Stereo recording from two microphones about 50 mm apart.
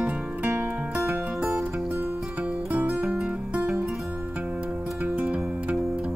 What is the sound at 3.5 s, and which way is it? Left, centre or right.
Music, right.